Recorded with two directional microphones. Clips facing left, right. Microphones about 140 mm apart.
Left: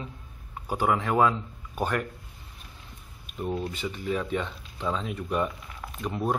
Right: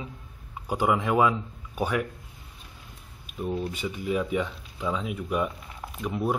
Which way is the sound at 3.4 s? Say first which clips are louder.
Right 1 dB; 10° left (ahead or behind).